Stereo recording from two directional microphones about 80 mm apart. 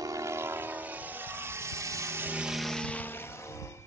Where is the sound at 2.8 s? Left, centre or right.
Centre.